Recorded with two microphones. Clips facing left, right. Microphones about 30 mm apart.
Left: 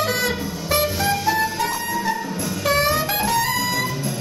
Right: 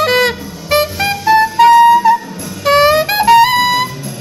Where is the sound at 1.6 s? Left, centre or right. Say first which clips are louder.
Right 18 dB; right.